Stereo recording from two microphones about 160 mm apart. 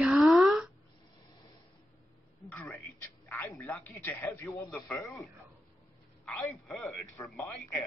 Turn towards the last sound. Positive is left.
turn(degrees=0)  # may be behind; listen again after turning